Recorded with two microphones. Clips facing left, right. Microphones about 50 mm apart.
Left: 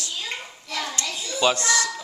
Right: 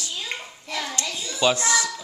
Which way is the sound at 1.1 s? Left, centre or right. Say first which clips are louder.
Even; centre.